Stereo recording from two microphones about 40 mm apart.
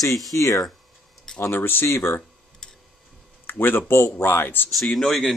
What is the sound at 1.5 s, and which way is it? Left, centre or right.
Speech, left.